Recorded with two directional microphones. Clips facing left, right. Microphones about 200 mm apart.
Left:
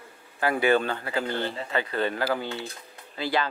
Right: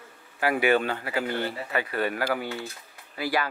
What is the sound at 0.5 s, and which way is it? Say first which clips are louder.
Speech: left 1 dB; 30° left (ahead or behind).